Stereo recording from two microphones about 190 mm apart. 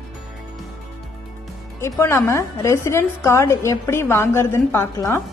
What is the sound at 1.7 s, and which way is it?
A woman's voice, 15° left (ahead or behind).